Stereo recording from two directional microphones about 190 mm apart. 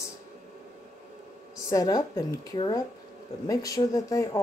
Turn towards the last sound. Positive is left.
turn(degrees=20)  # may be behind; listen again after turning